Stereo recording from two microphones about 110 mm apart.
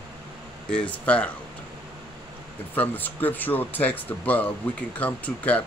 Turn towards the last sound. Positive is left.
turn(degrees=15)  # may be behind; listen again after turning